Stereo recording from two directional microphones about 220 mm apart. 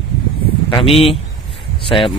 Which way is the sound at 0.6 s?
20° left (ahead or behind).